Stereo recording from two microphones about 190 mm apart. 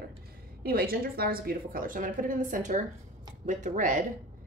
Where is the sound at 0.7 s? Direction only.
50° right (ahead or behind).